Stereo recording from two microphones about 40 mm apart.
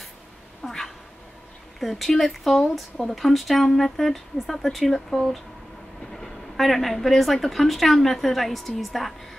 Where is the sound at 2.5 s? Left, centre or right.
Centre.